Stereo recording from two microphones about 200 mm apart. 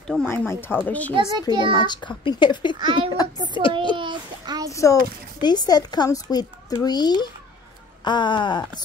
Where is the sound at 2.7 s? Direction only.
25° right (ahead or behind).